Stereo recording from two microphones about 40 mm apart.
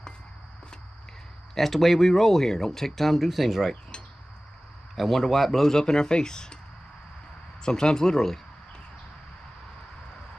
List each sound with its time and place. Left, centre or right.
1.5 s speech: centre
4.9 s speech: centre
5.7 s speech: centre
7.6 s speech: centre